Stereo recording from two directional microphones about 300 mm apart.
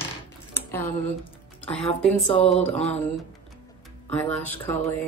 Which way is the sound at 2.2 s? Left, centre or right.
Centre.